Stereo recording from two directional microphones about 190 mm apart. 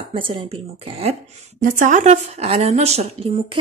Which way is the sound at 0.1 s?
25° right (ahead or behind).